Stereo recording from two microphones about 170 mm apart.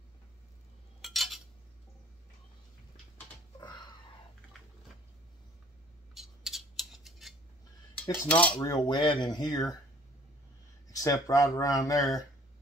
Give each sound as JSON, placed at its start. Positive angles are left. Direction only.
{"t": 1.0, "sound": "cutlery", "side_deg": 0}
{"t": 6.1, "sound": "a sound", "side_deg": 0}
{"t": 8.0, "sound": "cutlery", "side_deg": 10}
{"t": 8.5, "sound": "speech", "side_deg": 25}
{"t": 10.9, "sound": "speech", "side_deg": 20}